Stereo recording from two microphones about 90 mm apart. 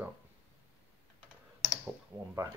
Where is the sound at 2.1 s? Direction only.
35° right (ahead or behind).